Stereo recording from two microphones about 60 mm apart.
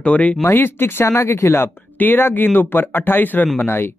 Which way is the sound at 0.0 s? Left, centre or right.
Left.